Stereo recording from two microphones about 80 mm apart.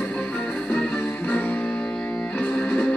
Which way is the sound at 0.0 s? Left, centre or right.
Centre.